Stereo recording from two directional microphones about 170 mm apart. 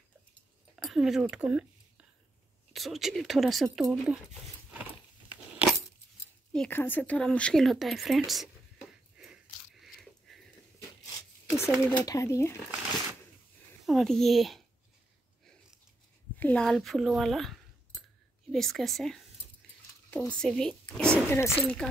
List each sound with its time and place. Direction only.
0.7 s a sound: centre (ahead or behind)
2.7 s speech: centre (ahead or behind)
5.5 s keys jangling: 5° right (ahead or behind)
6.5 s speech: 10° left (ahead or behind)
9.2 s a sound: centre (ahead or behind)
11.1 s speech: 15° left (ahead or behind)
13.8 s speech: centre (ahead or behind)
16.3 s speech: 5° left (ahead or behind)